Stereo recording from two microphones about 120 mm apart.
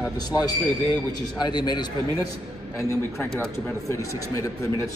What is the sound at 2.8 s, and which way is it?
Speech, 25° left (ahead or behind).